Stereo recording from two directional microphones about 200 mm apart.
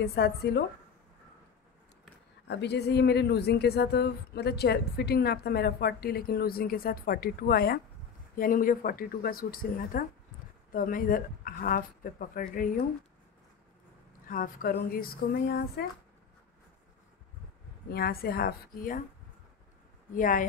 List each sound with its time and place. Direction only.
0.0 s a woman's voice: 55° left (ahead or behind)
2.4 s a woman's voice: 60° left (ahead or behind); by 12.8 s 40° left (ahead or behind)
14.2 s a woman's voice: 45° left (ahead or behind)
17.8 s a woman's voice: 50° left (ahead or behind)
20.2 s a woman's voice: 40° left (ahead or behind)